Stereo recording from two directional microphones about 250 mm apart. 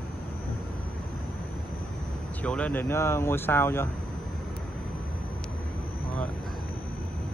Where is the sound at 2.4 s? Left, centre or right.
Centre.